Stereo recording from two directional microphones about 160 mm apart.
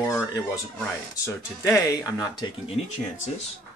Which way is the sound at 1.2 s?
15° left (ahead or behind).